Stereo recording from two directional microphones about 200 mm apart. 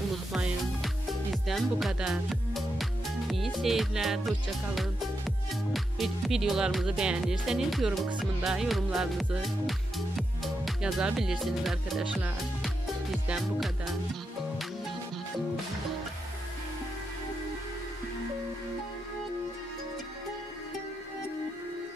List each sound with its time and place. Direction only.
1.3 s speech: centre (ahead or behind)